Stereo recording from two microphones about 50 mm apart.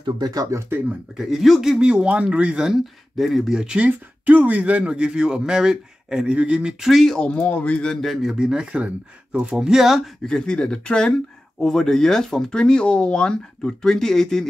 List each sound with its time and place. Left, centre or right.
0.5 s speech: right
1.1 s speech: centre
1.8 s speech: centre
2.6 s speech: centre
3.5 s speech: centre
3.8 s speech: right; by 6.3 s centre
6.3 s speech: right
6.8 s speech: centre
7.2 s a man's voice: centre
8.0 s speech: centre
10.2 s speech: centre